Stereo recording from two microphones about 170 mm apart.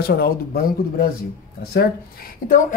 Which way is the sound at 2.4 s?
55° left (ahead or behind).